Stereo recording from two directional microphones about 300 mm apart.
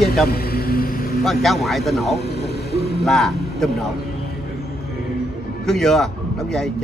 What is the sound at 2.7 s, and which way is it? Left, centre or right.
Vehicle, left.